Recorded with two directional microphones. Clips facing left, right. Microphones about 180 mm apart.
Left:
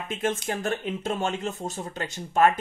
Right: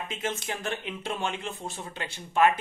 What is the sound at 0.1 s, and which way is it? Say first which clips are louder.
Speech: left 8 dB; 45° left (ahead or behind).